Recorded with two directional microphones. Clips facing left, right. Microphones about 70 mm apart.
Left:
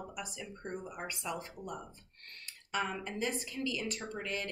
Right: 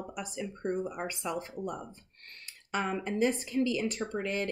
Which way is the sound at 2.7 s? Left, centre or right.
Right.